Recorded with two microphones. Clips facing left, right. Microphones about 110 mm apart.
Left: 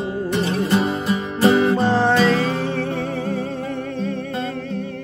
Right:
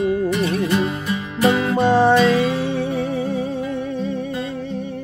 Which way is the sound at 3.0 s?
5° right (ahead or behind).